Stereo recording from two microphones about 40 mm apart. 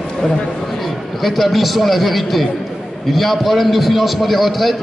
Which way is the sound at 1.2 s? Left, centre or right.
Centre.